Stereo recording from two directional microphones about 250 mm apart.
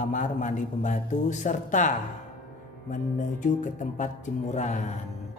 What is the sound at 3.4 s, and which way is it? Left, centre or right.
Speech, left.